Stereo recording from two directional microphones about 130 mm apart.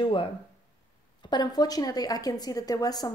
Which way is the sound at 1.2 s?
35° left (ahead or behind).